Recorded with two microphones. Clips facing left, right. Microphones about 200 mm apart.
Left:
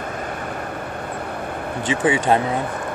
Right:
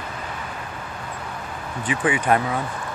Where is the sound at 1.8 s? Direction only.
30° left (ahead or behind).